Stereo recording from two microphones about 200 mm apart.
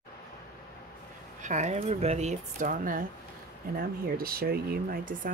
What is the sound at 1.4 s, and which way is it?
Speech, 35° right (ahead or behind).